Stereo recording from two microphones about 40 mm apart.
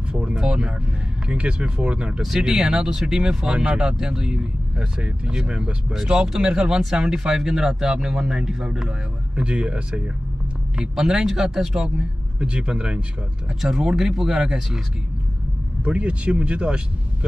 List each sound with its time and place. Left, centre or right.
0.1 s speech: centre
2.2 s speech: centre
3.8 s speech: centre
6.0 s speech: centre
10.8 s speech: centre
12.4 s speech: right
13.6 s speech: centre
15.8 s speech: right